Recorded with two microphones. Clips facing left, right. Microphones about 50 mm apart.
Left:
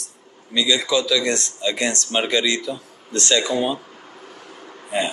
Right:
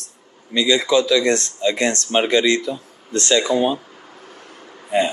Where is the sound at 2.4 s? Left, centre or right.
Right.